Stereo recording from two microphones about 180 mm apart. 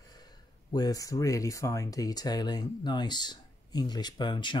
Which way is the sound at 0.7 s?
20° left (ahead or behind).